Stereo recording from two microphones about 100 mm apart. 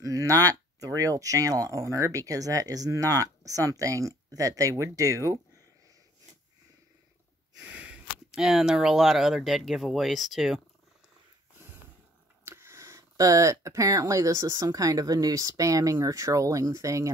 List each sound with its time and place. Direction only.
0.0 s speech: 35° right (ahead or behind)
7.6 s speech: 15° right (ahead or behind)
12.4 s speech: 25° right (ahead or behind)